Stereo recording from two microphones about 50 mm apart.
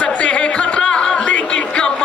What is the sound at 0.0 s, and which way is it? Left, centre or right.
Music, left.